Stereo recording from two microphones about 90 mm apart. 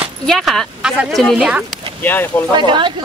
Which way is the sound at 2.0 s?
20° left (ahead or behind).